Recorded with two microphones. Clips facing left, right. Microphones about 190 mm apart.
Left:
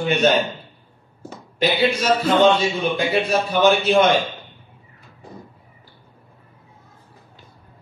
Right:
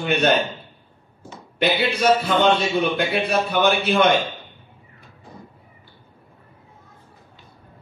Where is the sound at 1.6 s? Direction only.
60° right (ahead or behind).